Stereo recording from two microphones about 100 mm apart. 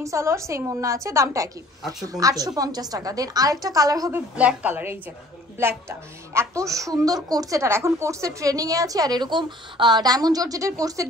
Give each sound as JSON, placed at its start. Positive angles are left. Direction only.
{"t": 0.0, "sound": "speech", "side_deg": -30}
{"t": 4.1, "sound": "a woman's voice", "side_deg": -15}
{"t": 5.6, "sound": "a woman's voice", "side_deg": -25}